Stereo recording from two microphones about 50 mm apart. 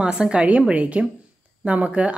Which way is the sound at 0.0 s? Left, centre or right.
Centre.